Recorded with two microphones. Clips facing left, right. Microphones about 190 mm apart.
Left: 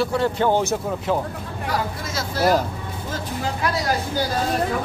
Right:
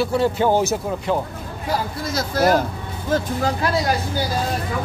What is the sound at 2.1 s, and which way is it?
Speech, 40° right (ahead or behind).